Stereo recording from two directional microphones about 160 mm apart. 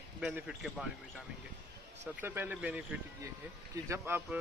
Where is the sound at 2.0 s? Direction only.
15° right (ahead or behind).